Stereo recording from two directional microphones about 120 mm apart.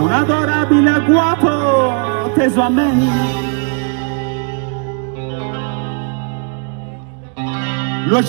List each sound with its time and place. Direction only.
0.1 s music: 50° left (ahead or behind); by 3.8 s 35° left (ahead or behind)
5.3 s music: 45° left (ahead or behind)
7.3 s music: 35° left (ahead or behind)